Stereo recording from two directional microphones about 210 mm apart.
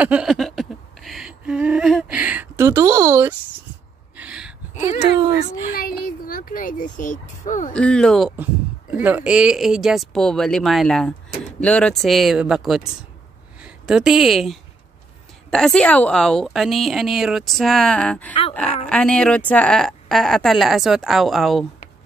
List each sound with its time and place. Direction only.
0.0 s a sound: 5° right (ahead or behind)
5.7 s speech: 45° left (ahead or behind)
7.7 s a woman's voice: 5° left (ahead or behind)